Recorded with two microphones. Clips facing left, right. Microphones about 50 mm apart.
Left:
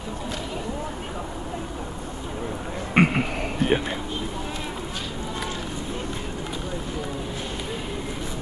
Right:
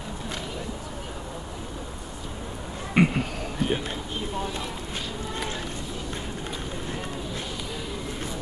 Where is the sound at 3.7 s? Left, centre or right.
Left.